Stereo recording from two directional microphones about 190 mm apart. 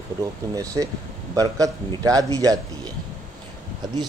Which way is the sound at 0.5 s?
15° right (ahead or behind).